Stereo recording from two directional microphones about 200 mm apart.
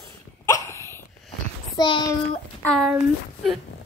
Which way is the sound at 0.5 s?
15° left (ahead or behind).